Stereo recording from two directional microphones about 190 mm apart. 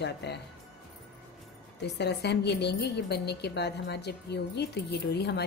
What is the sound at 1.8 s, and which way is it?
A woman's voice, 60° left (ahead or behind).